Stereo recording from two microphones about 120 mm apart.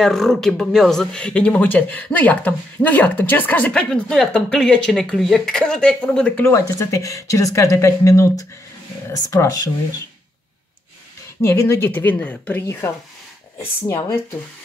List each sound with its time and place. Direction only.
0.0 s speech: 5° left (ahead or behind)
6.5 s speech: 25° left (ahead or behind)
11.4 s speech: 20° left (ahead or behind)